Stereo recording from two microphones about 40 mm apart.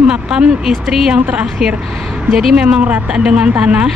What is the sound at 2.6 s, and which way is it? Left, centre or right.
Speech, right.